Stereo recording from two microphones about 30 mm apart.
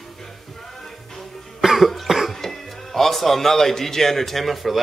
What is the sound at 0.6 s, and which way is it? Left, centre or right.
Music, centre.